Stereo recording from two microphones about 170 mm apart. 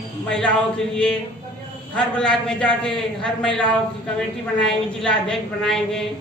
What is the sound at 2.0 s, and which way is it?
A woman's voice, 5° left (ahead or behind).